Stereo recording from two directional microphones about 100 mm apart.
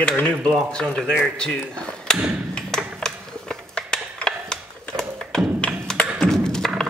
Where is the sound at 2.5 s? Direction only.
5° left (ahead or behind).